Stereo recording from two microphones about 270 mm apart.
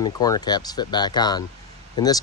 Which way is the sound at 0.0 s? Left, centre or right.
Centre.